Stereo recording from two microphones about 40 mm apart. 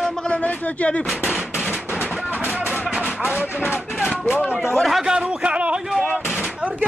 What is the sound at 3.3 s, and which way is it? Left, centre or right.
Speech, left.